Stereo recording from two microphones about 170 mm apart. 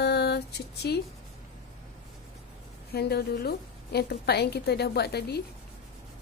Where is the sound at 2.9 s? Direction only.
70° left (ahead or behind).